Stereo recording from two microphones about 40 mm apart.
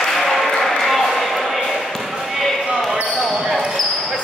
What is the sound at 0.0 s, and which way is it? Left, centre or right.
Ping, centre.